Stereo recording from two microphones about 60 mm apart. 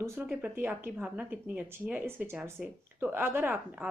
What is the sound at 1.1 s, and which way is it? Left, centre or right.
Speech, right.